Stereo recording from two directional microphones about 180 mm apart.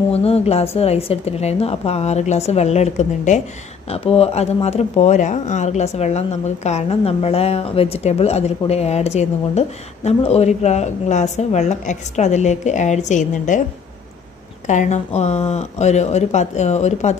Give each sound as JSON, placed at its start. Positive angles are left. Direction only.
{"t": 0.1, "sound": "speech", "side_deg": 35}
{"t": 14.7, "sound": "speech", "side_deg": 40}